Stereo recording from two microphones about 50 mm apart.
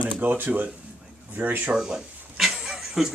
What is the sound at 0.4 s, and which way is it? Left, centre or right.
Speech, right.